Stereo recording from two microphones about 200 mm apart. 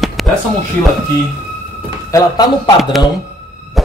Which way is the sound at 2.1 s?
20° left (ahead or behind).